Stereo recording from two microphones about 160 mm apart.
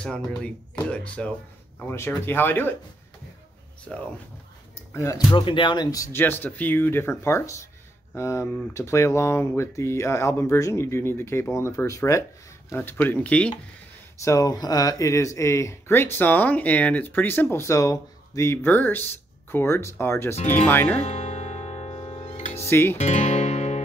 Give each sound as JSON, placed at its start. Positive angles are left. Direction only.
{"t": 0.4, "sound": "speech", "side_deg": 5}
{"t": 3.9, "sound": "speech", "side_deg": 5}
{"t": 4.9, "sound": "speech", "side_deg": 20}
{"t": 14.2, "sound": "speech", "side_deg": 20}
{"t": 21.0, "sound": "music", "side_deg": 40}
{"t": 22.7, "sound": "speech", "side_deg": 15}
{"t": 22.9, "sound": "guitar", "side_deg": 45}